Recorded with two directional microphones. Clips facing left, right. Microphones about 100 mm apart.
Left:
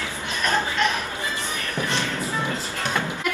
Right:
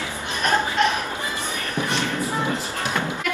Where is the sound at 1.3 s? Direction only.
15° right (ahead or behind).